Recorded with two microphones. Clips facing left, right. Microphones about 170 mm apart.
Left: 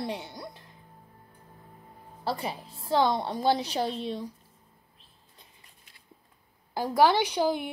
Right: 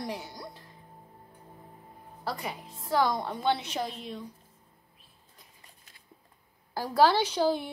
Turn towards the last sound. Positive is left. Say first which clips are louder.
# even
turn(degrees=15)  # may be behind; listen again after turning